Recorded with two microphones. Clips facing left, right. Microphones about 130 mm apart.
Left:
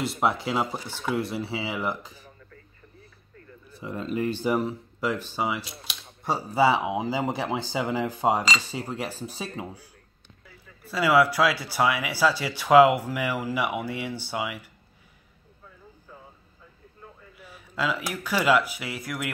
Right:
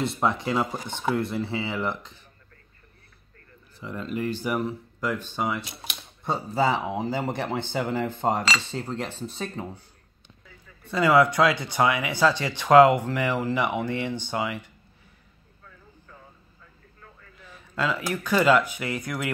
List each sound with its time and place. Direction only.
0.0 s speech: 5° left (ahead or behind)
3.8 s speech: 20° left (ahead or behind)
17.0 s speech: 10° left (ahead or behind)